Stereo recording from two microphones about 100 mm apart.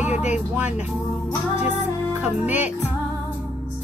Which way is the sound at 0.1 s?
15° right (ahead or behind).